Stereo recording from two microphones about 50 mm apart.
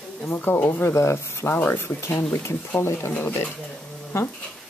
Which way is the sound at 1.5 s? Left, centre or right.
Left.